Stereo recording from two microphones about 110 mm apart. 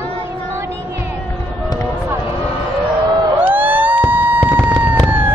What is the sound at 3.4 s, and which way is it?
Police car, 15° right (ahead or behind).